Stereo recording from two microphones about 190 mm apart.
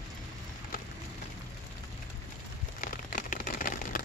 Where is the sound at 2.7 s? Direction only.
45° left (ahead or behind).